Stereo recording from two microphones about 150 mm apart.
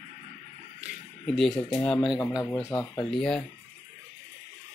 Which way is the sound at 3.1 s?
5° left (ahead or behind).